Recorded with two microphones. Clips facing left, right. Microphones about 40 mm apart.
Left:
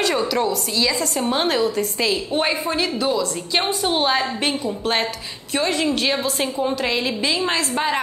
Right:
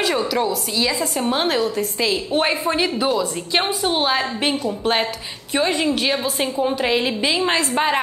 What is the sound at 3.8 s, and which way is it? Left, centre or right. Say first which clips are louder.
A woman's voice: even; centre.